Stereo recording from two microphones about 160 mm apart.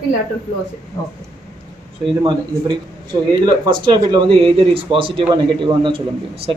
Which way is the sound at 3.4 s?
30° right (ahead or behind).